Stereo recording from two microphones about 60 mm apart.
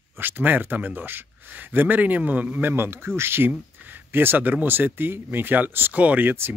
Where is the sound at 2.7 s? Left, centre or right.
Right.